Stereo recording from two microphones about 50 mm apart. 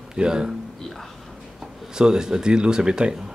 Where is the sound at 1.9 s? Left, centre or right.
Centre.